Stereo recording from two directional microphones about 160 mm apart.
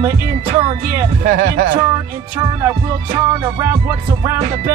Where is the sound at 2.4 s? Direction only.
25° right (ahead or behind).